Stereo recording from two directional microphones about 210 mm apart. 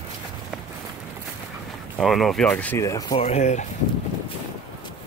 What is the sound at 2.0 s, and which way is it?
Speech, centre (ahead or behind).